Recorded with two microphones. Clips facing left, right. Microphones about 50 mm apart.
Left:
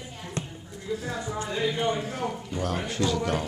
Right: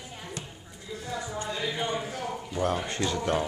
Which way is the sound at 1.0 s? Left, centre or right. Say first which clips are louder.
Left 2 dB; centre.